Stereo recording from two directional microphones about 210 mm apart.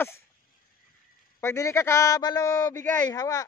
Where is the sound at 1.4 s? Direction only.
15° left (ahead or behind).